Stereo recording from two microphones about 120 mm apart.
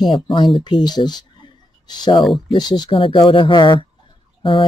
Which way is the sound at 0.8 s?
35° left (ahead or behind).